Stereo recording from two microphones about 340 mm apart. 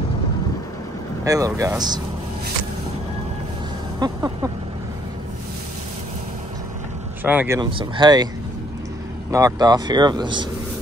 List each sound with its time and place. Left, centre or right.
1.2 s speech: centre
4.0 s music: centre
7.2 s speech: centre
9.3 s speech: centre